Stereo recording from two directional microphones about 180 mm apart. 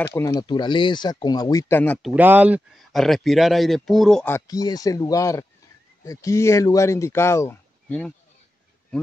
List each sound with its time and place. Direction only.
0.0 s speech: 15° left (ahead or behind)
0.5 s speech: 25° left (ahead or behind); by 2.0 s 10° left (ahead or behind)
2.0 s speech: 5° right (ahead or behind)
4.3 s speech: 20° left (ahead or behind)